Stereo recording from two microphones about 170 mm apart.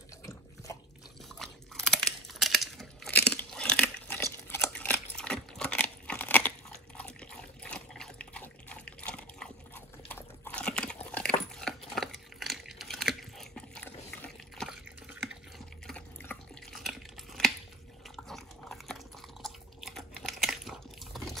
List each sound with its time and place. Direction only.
0.2 s water: 20° left (ahead or behind)
1.3 s crunch: 5° left (ahead or behind)
3.1 s a sound: 10° left (ahead or behind)
7.0 s liquid: 5° left (ahead or behind)
11.1 s dog: 5° left (ahead or behind)
14.1 s liquid: 10° left (ahead or behind)
14.7 s water: 5° right (ahead or behind)
15.9 s water: 5° left (ahead or behind)
16.8 s a sound: centre (ahead or behind)